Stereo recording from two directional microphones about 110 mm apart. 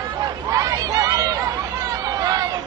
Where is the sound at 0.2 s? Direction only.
35° right (ahead or behind).